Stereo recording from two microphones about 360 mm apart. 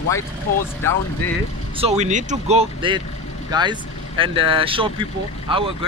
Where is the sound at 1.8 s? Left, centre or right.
Centre.